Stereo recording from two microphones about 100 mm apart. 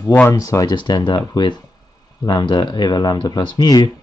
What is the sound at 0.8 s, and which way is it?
Speech, 50° left (ahead or behind).